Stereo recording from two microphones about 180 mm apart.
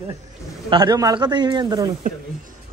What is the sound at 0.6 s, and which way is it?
Speech, 25° right (ahead or behind).